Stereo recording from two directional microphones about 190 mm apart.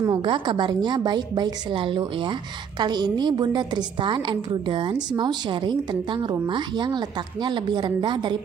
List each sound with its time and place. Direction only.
0.0 s a woman's voice: 25° right (ahead or behind)